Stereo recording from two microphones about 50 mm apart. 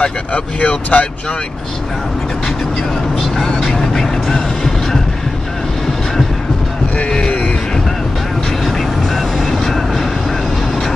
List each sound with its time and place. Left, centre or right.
0.0 s speech: left
3.3 s vehicle: centre
7.0 s a sound: centre